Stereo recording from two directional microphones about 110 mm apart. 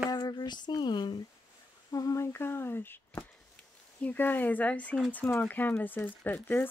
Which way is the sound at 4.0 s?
15° left (ahead or behind).